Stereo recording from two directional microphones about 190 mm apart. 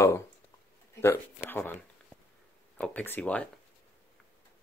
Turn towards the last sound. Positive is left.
turn(degrees=5)  # may be behind; listen again after turning